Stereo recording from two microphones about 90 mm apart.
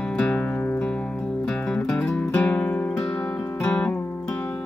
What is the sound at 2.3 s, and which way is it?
Music, 15° left (ahead or behind).